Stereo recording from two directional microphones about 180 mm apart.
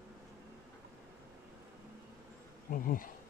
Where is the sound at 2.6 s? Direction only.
50° left (ahead or behind).